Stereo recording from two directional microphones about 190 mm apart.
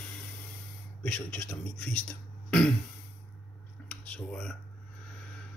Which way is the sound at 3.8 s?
5° left (ahead or behind).